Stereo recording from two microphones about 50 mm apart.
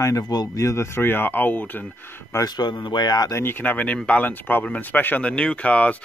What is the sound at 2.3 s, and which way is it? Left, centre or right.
Speech, left.